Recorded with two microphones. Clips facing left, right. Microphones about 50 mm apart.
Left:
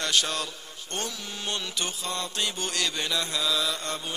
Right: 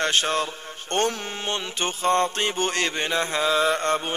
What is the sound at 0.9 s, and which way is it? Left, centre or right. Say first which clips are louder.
Speech: right 10 dB; right.